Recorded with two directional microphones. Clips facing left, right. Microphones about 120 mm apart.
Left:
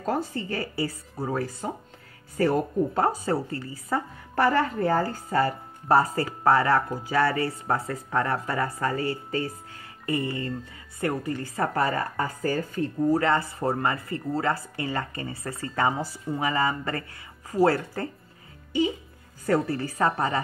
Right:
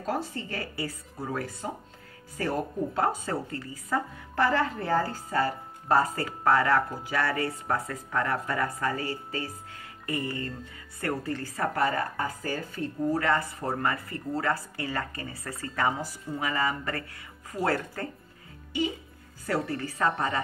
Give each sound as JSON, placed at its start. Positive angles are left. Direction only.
{"t": 0.0, "sound": "a woman's voice", "side_deg": 45}
{"t": 3.3, "sound": "a woman's voice", "side_deg": 30}
{"t": 5.9, "sound": "speech", "side_deg": 30}
{"t": 11.5, "sound": "speech", "side_deg": 30}
{"t": 13.2, "sound": "speech", "side_deg": 25}
{"t": 19.4, "sound": "speech", "side_deg": 40}